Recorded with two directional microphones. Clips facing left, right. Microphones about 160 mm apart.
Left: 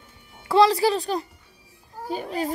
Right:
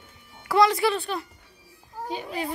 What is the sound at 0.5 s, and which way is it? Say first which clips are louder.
A child's voice: left 3 dB; 30° left (ahead or behind).